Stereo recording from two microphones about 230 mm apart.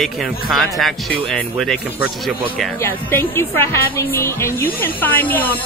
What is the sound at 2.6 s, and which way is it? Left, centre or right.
Music, centre.